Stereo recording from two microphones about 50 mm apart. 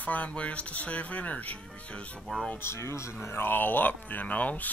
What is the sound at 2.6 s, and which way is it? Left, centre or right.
Speech, left.